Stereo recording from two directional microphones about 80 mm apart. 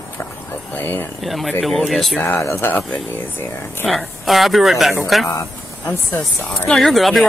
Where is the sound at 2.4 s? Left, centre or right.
Left.